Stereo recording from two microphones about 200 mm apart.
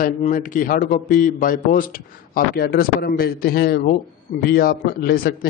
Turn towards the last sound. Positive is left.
turn(degrees=50)  # may be behind; listen again after turning